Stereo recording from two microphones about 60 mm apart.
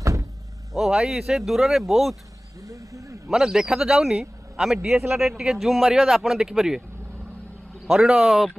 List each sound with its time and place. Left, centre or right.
0.0 s vehicle: right
0.7 s speech: centre
2.6 s music: right
3.3 s a man's voice: centre
7.8 s speech: centre